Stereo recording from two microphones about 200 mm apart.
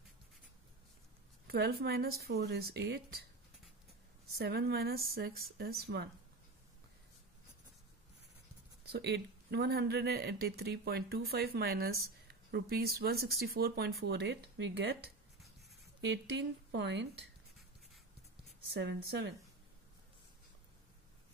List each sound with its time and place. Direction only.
1.5 s speech: 50° right (ahead or behind)
4.4 s speech: 50° right (ahead or behind)
8.8 s a woman's voice: 55° right (ahead or behind)
18.8 s a woman's voice: 55° right (ahead or behind)